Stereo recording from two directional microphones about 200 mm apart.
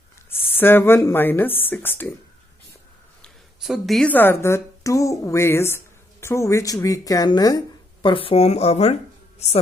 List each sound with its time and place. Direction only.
0.6 s speech: 10° left (ahead or behind)
3.6 s speech: centre (ahead or behind); by 8.9 s 30° left (ahead or behind)